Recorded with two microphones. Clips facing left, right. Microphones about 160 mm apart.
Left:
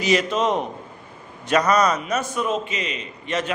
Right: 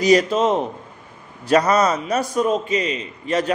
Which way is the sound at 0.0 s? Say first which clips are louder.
Right 5 dB; 35° right (ahead or behind).